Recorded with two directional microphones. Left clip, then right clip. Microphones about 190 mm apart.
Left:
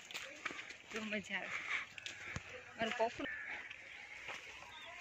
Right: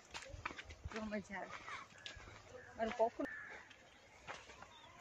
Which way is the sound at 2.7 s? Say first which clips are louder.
Even; 15° right (ahead or behind).